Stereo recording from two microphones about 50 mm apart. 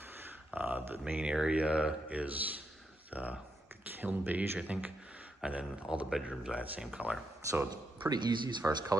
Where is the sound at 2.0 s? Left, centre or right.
Right.